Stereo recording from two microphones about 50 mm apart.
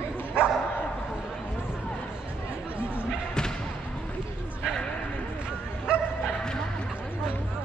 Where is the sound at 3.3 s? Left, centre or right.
Centre.